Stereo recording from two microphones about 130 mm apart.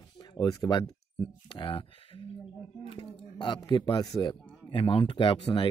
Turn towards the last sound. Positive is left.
turn(degrees=40)  # may be behind; listen again after turning